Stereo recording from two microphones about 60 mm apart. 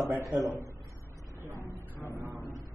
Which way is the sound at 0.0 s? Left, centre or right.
Right.